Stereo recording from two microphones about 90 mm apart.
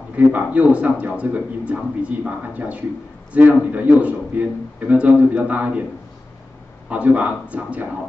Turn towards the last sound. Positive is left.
turn(degrees=-15)  # may be behind; listen again after turning